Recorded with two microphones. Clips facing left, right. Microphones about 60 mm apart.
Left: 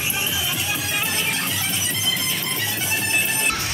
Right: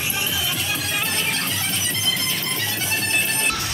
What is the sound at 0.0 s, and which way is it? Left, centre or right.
Music, centre.